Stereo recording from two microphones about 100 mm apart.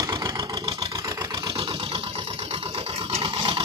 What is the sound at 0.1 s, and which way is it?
Vehicle, 45° right (ahead or behind).